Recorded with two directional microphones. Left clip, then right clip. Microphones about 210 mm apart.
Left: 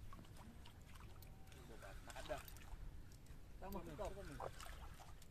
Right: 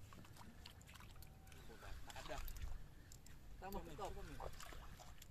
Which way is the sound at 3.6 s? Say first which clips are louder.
Even; 5° right (ahead or behind).